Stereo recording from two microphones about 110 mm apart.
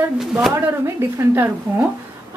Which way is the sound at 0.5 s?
25° right (ahead or behind).